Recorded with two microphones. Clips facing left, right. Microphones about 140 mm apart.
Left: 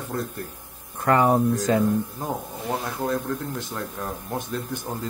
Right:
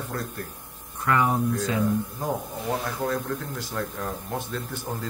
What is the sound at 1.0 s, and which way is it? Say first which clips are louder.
Speech: left 4 dB; 40° left (ahead or behind).